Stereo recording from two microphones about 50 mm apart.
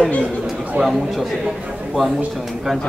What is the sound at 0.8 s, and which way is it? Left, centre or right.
Speech, centre.